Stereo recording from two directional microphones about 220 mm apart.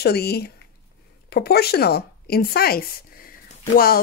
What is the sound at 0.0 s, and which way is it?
Speech, 45° left (ahead or behind).